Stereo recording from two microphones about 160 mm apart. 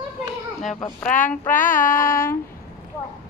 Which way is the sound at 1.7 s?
60° left (ahead or behind).